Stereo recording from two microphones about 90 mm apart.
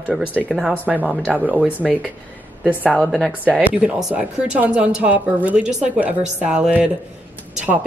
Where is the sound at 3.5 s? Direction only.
10° right (ahead or behind).